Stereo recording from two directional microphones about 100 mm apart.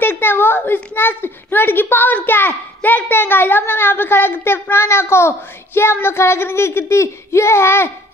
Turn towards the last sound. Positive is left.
turn(degrees=25)  # may be behind; listen again after turning